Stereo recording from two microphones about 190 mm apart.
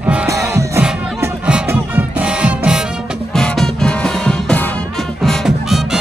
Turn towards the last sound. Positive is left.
turn(degrees=0)  # may be behind; listen again after turning